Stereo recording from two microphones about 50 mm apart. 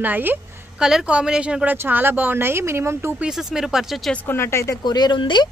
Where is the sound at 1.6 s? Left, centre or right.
Right.